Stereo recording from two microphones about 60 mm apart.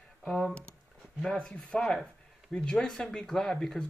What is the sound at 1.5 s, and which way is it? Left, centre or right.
Speech, centre.